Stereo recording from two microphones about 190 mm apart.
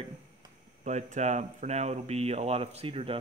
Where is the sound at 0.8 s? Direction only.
40° right (ahead or behind).